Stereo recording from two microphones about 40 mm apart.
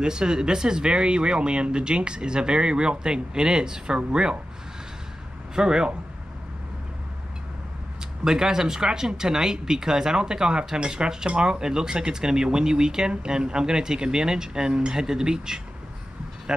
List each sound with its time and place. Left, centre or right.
0.0 s speech: centre
5.6 s speech: centre
8.2 s speech: centre